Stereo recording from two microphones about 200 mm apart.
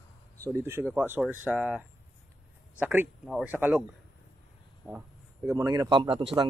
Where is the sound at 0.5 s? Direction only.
10° right (ahead or behind).